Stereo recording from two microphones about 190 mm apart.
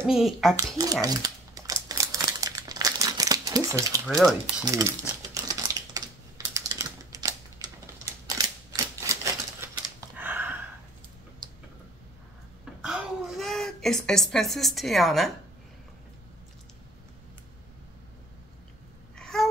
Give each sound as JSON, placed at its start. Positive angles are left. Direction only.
{"t": 0.0, "sound": "a child's voice", "side_deg": 0}
{"t": 0.6, "sound": "speech", "side_deg": -20}
{"t": 1.0, "sound": "crumpling", "side_deg": -20}
{"t": 4.1, "sound": "a child's voice", "side_deg": 0}
{"t": 4.6, "sound": "typewriter", "side_deg": -15}
{"t": 12.8, "sound": "a sound", "side_deg": 0}
{"t": 19.1, "sound": "a sound", "side_deg": 5}